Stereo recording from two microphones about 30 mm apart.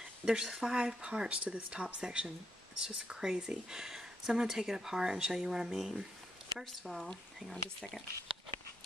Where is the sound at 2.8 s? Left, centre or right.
Right.